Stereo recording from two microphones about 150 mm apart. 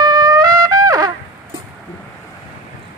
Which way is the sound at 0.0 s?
25° right (ahead or behind).